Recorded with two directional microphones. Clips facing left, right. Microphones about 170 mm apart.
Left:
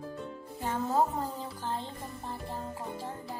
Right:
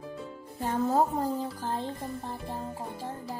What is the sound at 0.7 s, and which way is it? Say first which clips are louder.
Music: right 3 dB; 40° right (ahead or behind).